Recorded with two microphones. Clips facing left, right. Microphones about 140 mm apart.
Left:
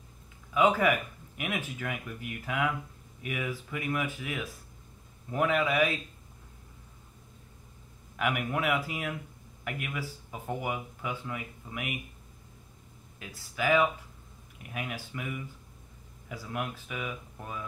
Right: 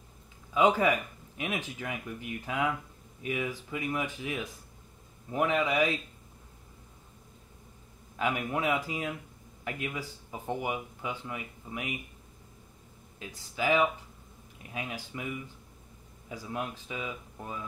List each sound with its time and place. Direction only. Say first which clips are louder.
0.6 s speech: even; 25° right (ahead or behind)
8.2 s speech: even; 25° right (ahead or behind)
13.2 s speech: even; 20° right (ahead or behind)